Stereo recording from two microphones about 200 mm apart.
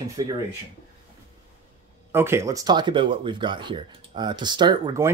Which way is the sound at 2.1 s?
10° right (ahead or behind).